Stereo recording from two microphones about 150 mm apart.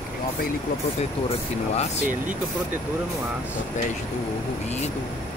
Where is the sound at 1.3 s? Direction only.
45° left (ahead or behind).